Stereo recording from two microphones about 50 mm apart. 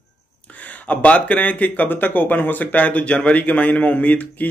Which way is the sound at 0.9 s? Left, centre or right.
Left.